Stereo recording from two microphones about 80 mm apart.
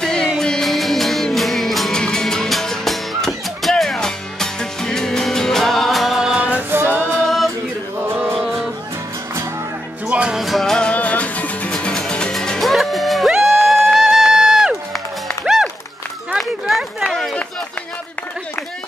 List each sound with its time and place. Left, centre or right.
0.0 s music: centre
7.2 s music: centre
8.0 s music: right
8.4 s music: centre
10.0 s music: centre
10.4 s music: centre
11.7 s music: centre
16.3 s a sound: centre